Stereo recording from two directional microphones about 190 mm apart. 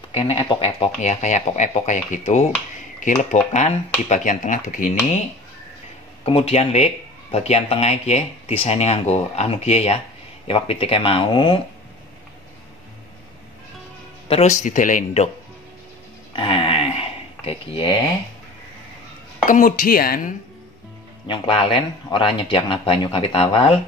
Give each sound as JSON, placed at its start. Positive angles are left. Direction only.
{"t": 0.1, "sound": "speech", "side_deg": 25}
{"t": 6.2, "sound": "speech", "side_deg": 30}
{"t": 14.2, "sound": "speech", "side_deg": 35}
{"t": 16.3, "sound": "a sound", "side_deg": 25}
{"t": 19.4, "sound": "speech", "side_deg": 45}
{"t": 21.3, "sound": "speech", "side_deg": 25}